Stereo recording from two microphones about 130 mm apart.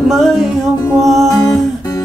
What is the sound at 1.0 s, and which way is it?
Music, centre (ahead or behind).